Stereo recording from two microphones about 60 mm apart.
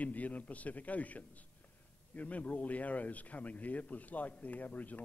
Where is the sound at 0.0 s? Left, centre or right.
Left.